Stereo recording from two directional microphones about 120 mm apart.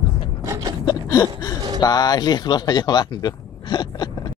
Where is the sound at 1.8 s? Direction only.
35° left (ahead or behind).